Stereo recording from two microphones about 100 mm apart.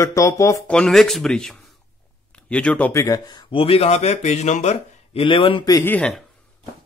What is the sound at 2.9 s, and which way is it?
Speech, 30° left (ahead or behind).